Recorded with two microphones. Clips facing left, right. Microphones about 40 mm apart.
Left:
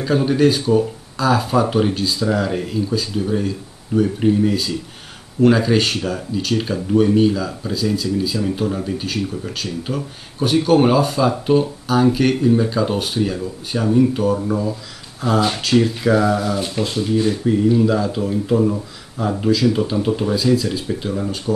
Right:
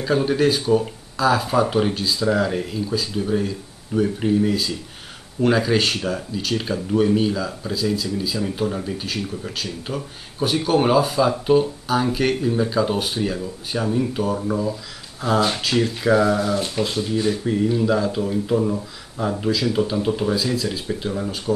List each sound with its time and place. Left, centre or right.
0.0 s speech: centre